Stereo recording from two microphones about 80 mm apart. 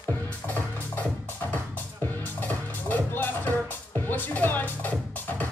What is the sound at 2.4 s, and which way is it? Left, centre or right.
Music, left.